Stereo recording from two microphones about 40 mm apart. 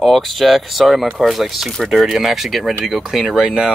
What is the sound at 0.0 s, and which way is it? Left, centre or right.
Speech, centre.